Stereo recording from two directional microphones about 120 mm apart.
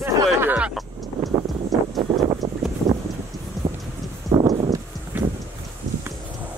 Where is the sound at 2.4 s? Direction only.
30° right (ahead or behind).